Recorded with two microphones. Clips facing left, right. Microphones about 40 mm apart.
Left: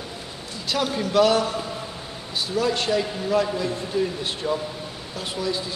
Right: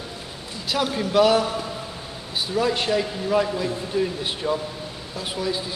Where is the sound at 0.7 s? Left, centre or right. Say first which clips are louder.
Right 1 dB; centre.